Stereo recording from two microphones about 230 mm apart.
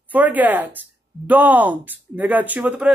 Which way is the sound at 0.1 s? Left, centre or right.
Centre.